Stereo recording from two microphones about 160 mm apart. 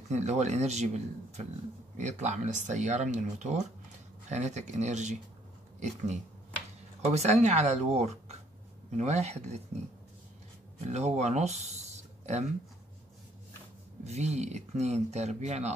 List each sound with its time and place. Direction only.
0.1 s speech: 45° right (ahead or behind)
7.0 s speech: 45° right (ahead or behind)
10.8 s speech: 45° right (ahead or behind)
14.0 s speech: 45° right (ahead or behind)